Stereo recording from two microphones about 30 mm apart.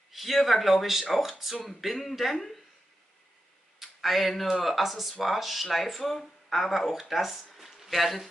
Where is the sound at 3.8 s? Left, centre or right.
Centre.